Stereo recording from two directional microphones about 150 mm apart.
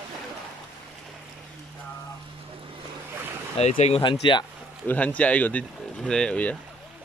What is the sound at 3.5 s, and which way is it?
Speech, 45° left (ahead or behind).